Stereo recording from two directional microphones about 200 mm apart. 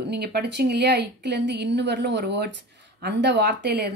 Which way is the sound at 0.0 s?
55° right (ahead or behind).